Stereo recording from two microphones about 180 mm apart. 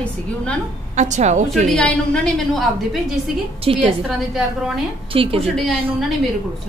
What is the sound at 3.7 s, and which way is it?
Speech, 30° right (ahead or behind).